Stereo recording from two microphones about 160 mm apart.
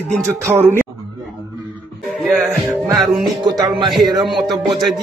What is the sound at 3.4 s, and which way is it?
Speech, 25° right (ahead or behind).